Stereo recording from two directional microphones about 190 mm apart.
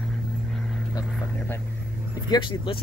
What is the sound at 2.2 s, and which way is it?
Speech, 25° left (ahead or behind).